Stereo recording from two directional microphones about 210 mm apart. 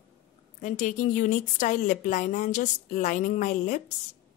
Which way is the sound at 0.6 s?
35° left (ahead or behind).